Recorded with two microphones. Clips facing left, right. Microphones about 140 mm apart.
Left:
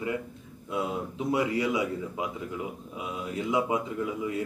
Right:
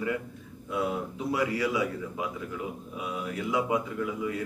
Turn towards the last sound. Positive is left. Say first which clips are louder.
# left 1 dB
turn(degrees=25)  # may be behind; listen again after turning